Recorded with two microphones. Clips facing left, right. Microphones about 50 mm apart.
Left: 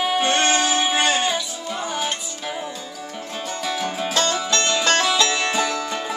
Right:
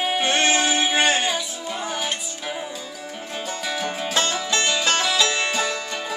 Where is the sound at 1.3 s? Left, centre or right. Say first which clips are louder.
Left 1 dB; centre.